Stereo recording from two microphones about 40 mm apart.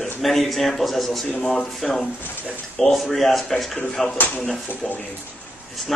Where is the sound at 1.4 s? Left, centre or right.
Centre.